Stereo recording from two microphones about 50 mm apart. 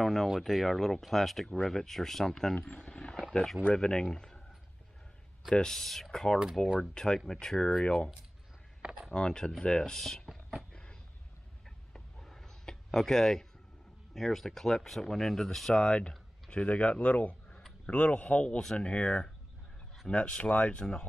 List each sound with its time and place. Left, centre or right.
0.0 s speech: centre
2.8 s a sound: centre
3.2 s speech: centre
3.7 s speech: centre
5.5 s speech: centre
9.1 s speech: centre
10.2 s a sound: centre
10.7 s a sound: centre
11.9 s a sound: centre
14.1 s speech: centre; by 18.6 s left
18.6 s speech: centre
18.9 s speech: left